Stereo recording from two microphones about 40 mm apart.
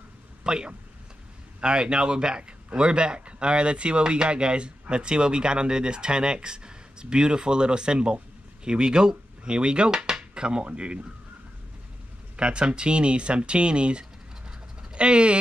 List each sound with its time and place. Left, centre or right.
0.4 s a man's voice: right
12.4 s a man's voice: right
14.8 s a sound: right